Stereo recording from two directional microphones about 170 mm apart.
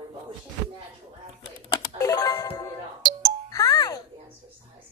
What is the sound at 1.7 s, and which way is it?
Music, 20° left (ahead or behind).